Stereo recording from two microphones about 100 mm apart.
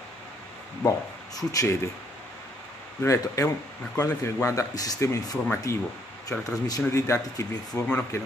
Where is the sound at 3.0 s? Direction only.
30° left (ahead or behind).